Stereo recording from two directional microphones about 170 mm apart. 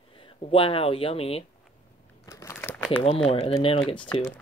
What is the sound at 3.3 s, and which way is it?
Speech, 40° left (ahead or behind).